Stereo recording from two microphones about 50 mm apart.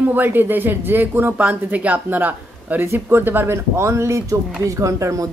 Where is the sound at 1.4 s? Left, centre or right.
Right.